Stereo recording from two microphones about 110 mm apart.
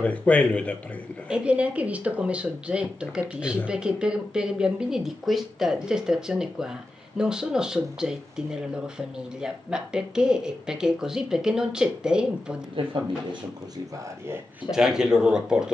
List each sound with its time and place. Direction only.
0.0 s speech: 15° left (ahead or behind)
1.3 s speech: 10° right (ahead or behind)
12.7 s speech: 45° right (ahead or behind)
14.7 s speech: 5° right (ahead or behind)